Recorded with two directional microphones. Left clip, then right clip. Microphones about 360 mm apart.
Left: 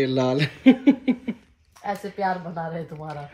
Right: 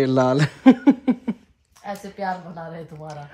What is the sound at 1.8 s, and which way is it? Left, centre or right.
A woman's voice, centre.